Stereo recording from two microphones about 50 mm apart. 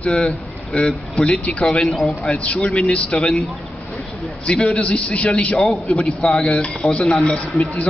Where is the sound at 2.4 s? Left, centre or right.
Left.